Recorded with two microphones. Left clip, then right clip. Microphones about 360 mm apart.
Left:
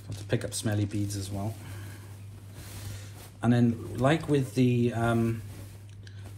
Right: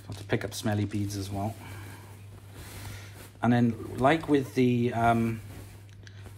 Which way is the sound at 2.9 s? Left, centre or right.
Centre.